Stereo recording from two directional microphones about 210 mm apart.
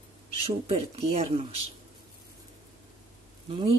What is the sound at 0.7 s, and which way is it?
Speech, 25° right (ahead or behind).